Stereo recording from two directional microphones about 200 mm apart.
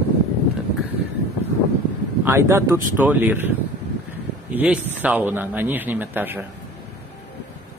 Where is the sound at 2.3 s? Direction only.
15° right (ahead or behind).